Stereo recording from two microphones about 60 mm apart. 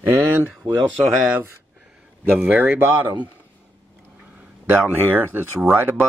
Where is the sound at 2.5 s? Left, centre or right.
Right.